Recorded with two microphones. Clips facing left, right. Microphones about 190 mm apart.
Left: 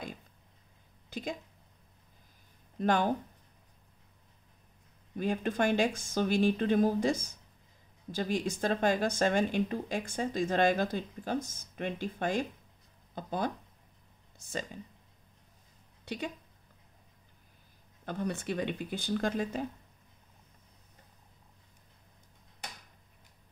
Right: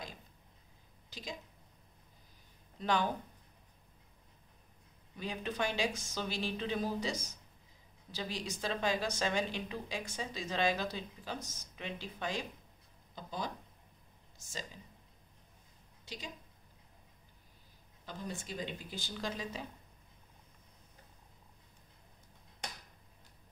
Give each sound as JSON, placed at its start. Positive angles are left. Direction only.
{"t": 1.1, "sound": "speech", "side_deg": 55}
{"t": 2.8, "sound": "speech", "side_deg": 50}
{"t": 5.1, "sound": "speech", "side_deg": 50}
{"t": 16.1, "sound": "speech", "side_deg": 60}
{"t": 18.0, "sound": "speech", "side_deg": 65}